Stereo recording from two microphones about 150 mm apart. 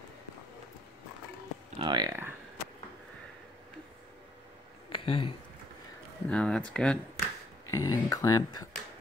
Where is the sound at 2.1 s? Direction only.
15° right (ahead or behind).